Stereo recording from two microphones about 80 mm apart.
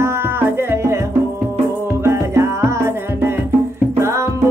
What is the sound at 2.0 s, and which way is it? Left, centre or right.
Music, right.